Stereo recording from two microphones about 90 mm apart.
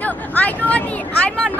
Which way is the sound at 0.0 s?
20° left (ahead or behind).